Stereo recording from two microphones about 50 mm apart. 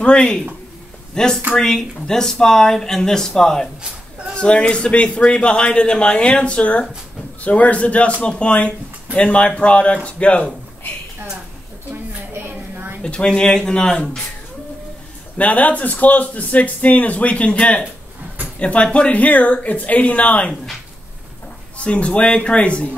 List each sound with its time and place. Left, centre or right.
0.0 s speech: centre
4.4 s a man's voice: centre
11.9 s a sound: right
13.0 s speech: centre
15.3 s a man's voice: left
21.7 s a man's voice: left